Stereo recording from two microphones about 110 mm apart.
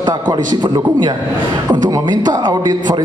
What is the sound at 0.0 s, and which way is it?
Speech, 35° right (ahead or behind).